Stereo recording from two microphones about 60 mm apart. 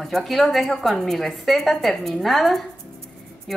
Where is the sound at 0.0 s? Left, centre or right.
Centre.